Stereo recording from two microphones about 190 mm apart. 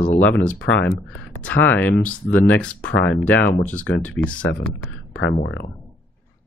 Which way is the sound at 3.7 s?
10° left (ahead or behind).